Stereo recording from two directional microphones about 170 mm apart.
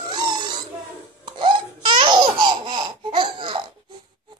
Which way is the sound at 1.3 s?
30° right (ahead or behind).